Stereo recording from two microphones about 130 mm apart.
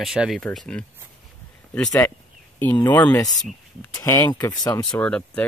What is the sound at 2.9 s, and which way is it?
Speech, 15° left (ahead or behind).